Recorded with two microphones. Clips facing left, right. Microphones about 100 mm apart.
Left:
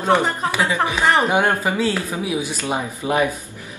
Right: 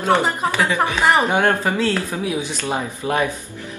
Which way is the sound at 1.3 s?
10° left (ahead or behind).